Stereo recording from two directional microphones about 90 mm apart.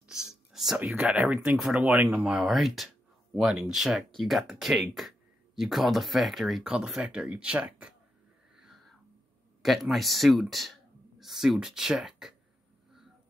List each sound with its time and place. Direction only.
0.1 s whispering: 5° right (ahead or behind)
0.7 s speech: 15° right (ahead or behind)
2.3 s speech: centre (ahead or behind)
8.5 s wheeze: centre (ahead or behind)
9.6 s speech: centre (ahead or behind)